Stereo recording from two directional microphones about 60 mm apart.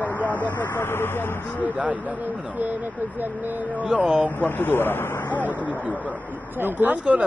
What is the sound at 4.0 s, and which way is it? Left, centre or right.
Speech, right.